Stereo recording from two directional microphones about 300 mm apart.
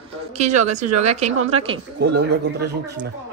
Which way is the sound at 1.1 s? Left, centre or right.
Right.